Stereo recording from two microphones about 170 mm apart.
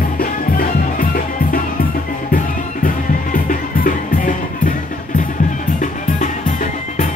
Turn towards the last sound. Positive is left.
turn(degrees=45)  # may be behind; listen again after turning